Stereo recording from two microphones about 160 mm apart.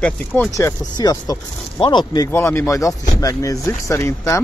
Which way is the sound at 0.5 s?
20° left (ahead or behind).